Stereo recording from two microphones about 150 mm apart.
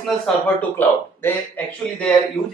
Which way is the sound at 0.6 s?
10° left (ahead or behind).